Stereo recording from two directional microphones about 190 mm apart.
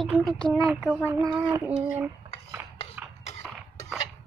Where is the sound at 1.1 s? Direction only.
15° right (ahead or behind).